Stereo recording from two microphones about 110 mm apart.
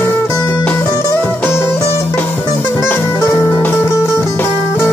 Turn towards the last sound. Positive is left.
turn(degrees=20)  # may be behind; listen again after turning